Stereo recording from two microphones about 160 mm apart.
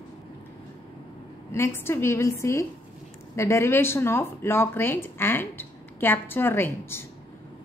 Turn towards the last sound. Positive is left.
turn(degrees=15)  # may be behind; listen again after turning